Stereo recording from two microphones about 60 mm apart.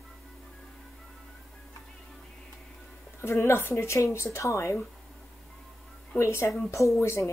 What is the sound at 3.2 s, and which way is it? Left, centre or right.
Speech, left.